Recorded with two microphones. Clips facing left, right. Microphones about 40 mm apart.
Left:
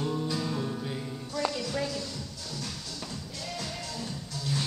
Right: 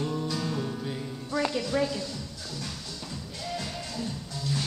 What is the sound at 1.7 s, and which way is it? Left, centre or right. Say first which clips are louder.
Music: right 5 dB; right.